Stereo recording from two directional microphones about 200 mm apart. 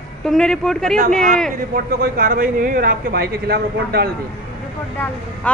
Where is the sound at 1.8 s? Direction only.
45° right (ahead or behind).